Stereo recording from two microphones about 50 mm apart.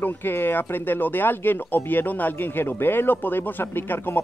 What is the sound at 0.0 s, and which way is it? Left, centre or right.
Speech, left.